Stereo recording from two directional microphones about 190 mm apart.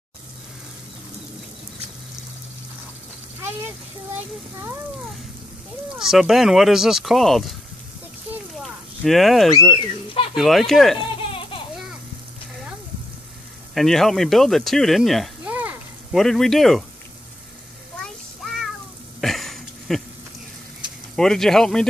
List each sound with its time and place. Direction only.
5.9 s speech: centre (ahead or behind)
9.0 s speech: centre (ahead or behind)
11.1 s a sound: 30° left (ahead or behind)
13.7 s speech: centre (ahead or behind)
18.0 s a sound: centre (ahead or behind)
21.2 s speech: 5° left (ahead or behind)